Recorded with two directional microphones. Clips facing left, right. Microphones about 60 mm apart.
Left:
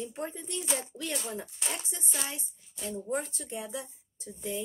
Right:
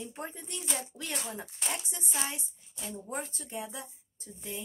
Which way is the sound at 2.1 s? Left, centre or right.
Centre.